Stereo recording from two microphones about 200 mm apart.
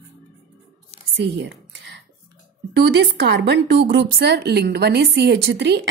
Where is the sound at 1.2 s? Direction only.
60° right (ahead or behind).